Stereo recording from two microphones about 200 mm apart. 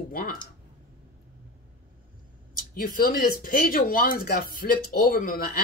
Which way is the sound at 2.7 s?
45° left (ahead or behind).